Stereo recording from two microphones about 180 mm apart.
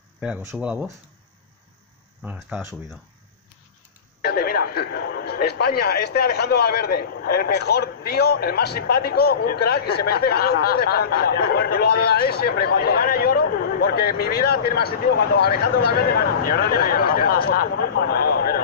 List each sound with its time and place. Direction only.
0.2 s speech: 5° right (ahead or behind)
2.2 s speech: 10° right (ahead or behind)
4.2 s speech: 60° left (ahead or behind)